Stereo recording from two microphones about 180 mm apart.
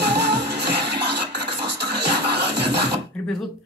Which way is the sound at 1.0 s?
65° right (ahead or behind).